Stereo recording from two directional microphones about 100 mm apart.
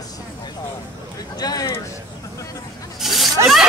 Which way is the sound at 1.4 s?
40° left (ahead or behind).